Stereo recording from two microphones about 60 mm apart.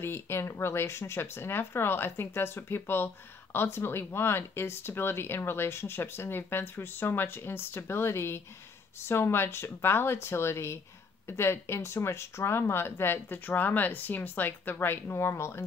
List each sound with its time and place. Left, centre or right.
0.0 s speech: left
15.1 s speech: left